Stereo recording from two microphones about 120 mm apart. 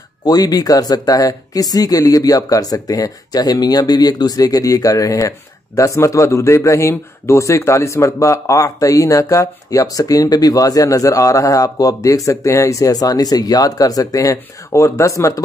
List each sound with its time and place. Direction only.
0.2 s a man's voice: 35° left (ahead or behind)